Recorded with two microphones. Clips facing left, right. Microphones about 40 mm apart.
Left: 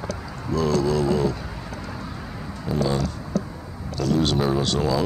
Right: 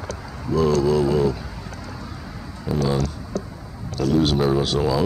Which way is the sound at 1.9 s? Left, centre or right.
Centre.